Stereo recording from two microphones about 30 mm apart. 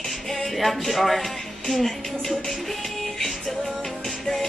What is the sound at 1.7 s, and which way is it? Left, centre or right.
Speech, centre.